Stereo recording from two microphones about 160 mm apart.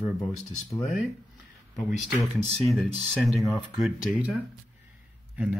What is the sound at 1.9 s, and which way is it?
Speech, centre (ahead or behind).